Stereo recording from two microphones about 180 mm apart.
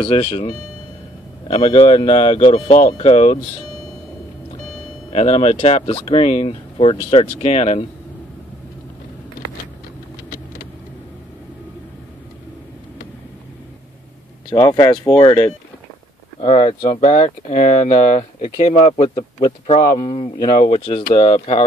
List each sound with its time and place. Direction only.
0.0 s speech: 30° left (ahead or behind)
1.5 s speech: 35° left (ahead or behind)
5.1 s speech: 35° left (ahead or behind)
14.5 s speech: 20° left (ahead or behind)
16.3 s speech: 35° left (ahead or behind)
20.5 s speech: 45° left (ahead or behind)